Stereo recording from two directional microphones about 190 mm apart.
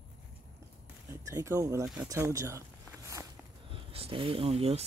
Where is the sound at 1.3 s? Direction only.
15° right (ahead or behind).